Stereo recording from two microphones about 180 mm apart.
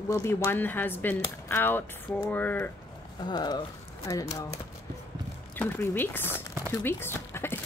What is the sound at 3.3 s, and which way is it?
Speech, 25° left (ahead or behind).